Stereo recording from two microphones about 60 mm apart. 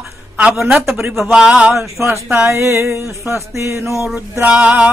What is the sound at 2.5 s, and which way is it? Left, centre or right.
Music, right.